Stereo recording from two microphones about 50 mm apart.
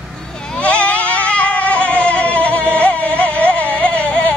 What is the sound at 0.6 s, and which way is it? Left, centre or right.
Goat, left.